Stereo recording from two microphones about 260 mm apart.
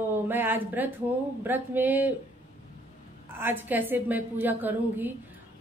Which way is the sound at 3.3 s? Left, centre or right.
Centre.